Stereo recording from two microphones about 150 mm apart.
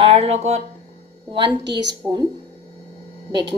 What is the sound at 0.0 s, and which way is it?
Speech, 40° right (ahead or behind).